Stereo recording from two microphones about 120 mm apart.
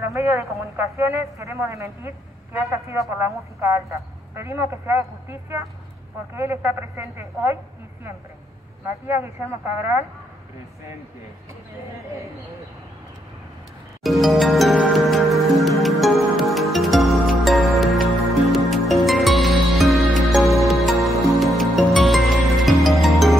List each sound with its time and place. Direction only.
0.0 s speech: 25° right (ahead or behind)
8.8 s speech: 20° right (ahead or behind)
14.0 s music: centre (ahead or behind)